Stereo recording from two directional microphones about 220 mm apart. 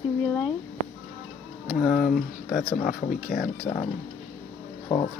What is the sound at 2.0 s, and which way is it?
Speech, 40° left (ahead or behind).